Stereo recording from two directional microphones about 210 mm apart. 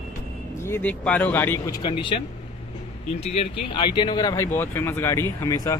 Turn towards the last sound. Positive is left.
turn(degrees=15)  # may be behind; listen again after turning